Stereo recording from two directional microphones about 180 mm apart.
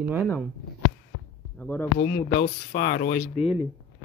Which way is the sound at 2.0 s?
50° left (ahead or behind).